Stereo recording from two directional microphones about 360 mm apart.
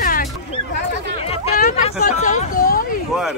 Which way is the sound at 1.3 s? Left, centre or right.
Left.